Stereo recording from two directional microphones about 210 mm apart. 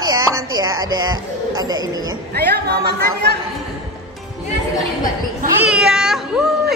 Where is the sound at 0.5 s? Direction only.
20° right (ahead or behind).